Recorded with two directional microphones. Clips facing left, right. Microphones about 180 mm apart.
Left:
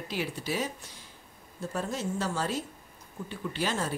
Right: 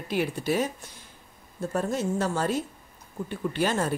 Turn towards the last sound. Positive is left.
turn(degrees=-50)  # may be behind; listen again after turning